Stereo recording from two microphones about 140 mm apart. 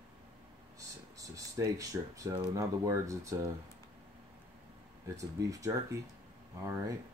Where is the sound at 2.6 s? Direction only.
25° right (ahead or behind).